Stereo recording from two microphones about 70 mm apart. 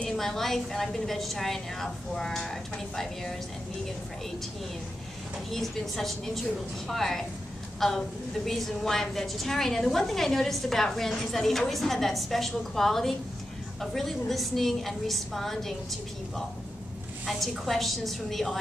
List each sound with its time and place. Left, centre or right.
0.0 s a woman's voice: centre
5.5 s a woman's voice: centre